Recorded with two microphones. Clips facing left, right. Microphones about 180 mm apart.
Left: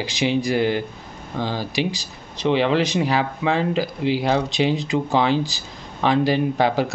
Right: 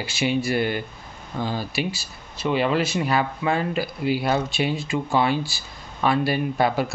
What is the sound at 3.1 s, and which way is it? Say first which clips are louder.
Speech: left 2 dB; 90° left.